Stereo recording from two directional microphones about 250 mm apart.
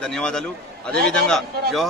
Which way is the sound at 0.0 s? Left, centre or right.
Centre.